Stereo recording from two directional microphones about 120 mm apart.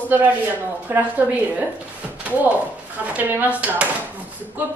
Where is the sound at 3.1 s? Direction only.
15° right (ahead or behind).